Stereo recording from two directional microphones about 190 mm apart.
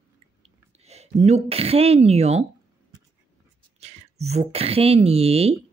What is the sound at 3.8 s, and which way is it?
Speech, 35° right (ahead or behind).